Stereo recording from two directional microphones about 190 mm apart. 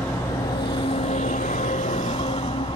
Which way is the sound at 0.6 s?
25° left (ahead or behind).